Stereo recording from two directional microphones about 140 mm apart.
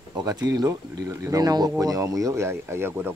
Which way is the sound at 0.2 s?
25° right (ahead or behind).